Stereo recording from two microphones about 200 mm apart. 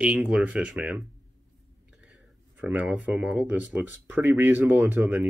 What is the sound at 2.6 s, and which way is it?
Speech, 10° right (ahead or behind).